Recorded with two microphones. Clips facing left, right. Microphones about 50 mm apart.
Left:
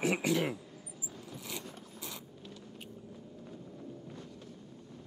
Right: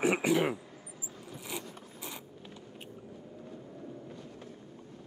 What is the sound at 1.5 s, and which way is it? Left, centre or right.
Mechanisms, right.